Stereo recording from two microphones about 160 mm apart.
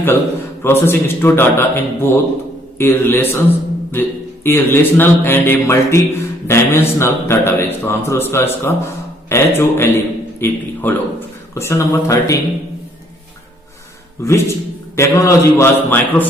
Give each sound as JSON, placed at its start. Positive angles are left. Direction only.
{"t": 0.0, "sound": "a man's voice", "side_deg": 15}
{"t": 14.2, "sound": "a man's voice", "side_deg": 20}